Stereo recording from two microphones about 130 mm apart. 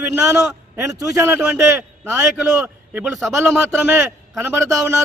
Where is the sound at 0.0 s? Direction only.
20° right (ahead or behind).